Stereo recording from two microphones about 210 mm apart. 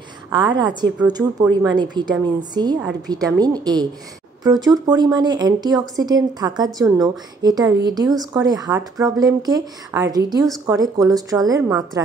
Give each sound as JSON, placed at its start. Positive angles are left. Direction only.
{"t": 0.3, "sound": "a woman's voice", "side_deg": -20}